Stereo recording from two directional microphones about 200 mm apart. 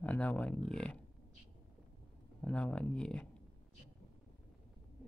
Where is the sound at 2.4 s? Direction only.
5° left (ahead or behind).